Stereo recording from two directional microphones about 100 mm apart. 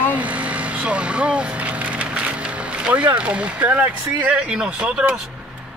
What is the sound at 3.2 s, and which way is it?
Speech, 10° right (ahead or behind).